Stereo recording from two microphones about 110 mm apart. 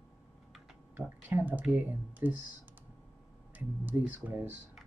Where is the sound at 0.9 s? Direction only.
15° right (ahead or behind).